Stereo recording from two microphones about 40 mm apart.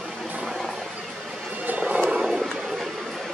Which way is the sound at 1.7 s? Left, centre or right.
Right.